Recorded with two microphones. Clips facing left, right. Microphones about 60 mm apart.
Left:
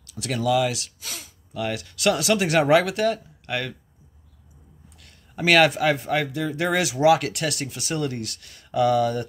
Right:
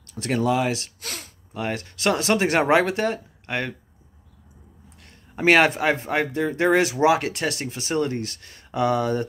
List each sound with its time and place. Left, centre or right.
0.1 s speech: right
1.0 s speech: right
1.5 s speech: right
5.3 s speech: right